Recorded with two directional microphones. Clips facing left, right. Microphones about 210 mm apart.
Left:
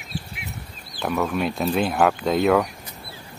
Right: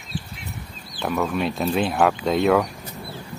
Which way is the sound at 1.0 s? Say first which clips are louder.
Even; centre (ahead or behind).